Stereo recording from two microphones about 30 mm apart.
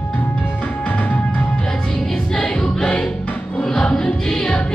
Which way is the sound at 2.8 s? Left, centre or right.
Left.